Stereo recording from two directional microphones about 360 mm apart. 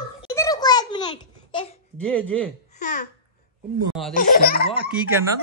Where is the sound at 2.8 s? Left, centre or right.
Left.